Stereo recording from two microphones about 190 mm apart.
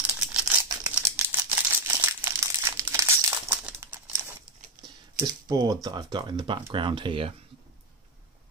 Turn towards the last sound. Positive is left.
turn(degrees=-25)  # may be behind; listen again after turning